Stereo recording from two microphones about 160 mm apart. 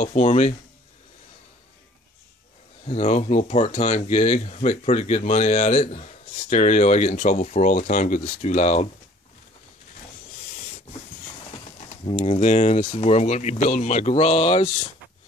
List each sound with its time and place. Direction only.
0.0 s speech: 45° left (ahead or behind)
2.9 s speech: 45° left (ahead or behind)
11.5 s speech: 40° left (ahead or behind)